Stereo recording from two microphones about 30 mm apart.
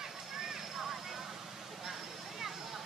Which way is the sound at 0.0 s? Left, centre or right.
Centre.